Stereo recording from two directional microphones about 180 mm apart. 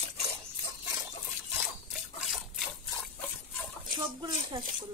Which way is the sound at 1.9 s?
Centre (ahead or behind).